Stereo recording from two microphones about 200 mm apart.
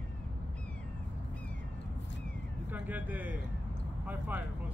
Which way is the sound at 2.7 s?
10° right (ahead or behind).